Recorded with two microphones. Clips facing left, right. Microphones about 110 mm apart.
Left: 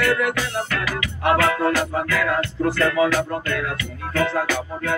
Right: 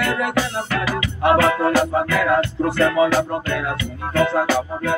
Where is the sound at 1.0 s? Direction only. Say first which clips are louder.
Right 3 dB; 25° right (ahead or behind).